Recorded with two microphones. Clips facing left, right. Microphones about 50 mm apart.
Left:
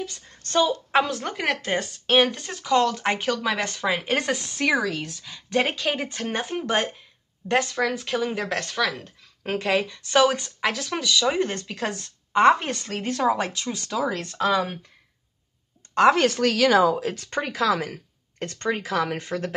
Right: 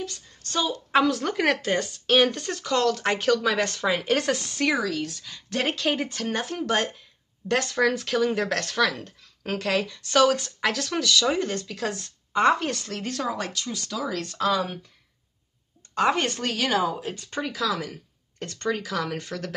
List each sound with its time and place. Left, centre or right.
0.3 s speech: left
0.9 s speech: centre
1.7 s speech: centre
2.2 s speech: centre
4.7 s speech: left
5.1 s speech: centre
6.0 s speech: left
7.6 s speech: centre
9.4 s speech: left
10.6 s speech: centre
11.3 s speech: left; by 13.3 s centre
13.3 s speech: left
15.9 s a woman's voice: left
17.3 s speech: left